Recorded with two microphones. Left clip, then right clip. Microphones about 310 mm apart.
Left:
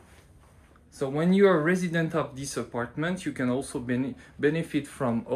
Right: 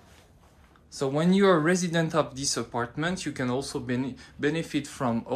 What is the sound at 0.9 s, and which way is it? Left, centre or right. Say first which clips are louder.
Speech: even; centre.